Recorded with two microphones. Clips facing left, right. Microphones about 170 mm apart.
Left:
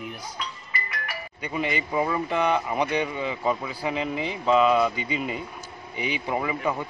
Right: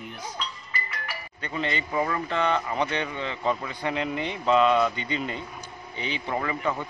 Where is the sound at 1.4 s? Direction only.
10° left (ahead or behind).